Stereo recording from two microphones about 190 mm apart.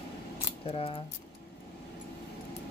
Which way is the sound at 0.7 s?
30° left (ahead or behind).